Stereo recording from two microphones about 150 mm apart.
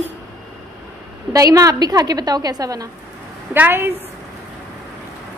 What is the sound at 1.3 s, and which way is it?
A woman's voice, 25° right (ahead or behind).